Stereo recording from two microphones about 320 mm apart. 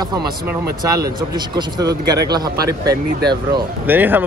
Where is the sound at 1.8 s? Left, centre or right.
Centre.